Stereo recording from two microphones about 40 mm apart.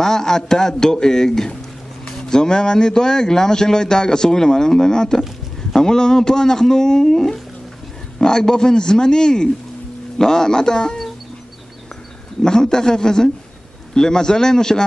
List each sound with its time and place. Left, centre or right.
0.0 s speech: centre
12.4 s speech: centre